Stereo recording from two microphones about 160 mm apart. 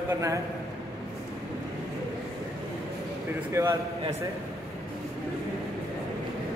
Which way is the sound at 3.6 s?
15° right (ahead or behind).